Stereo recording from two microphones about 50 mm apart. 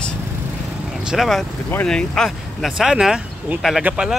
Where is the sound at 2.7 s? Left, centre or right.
Centre.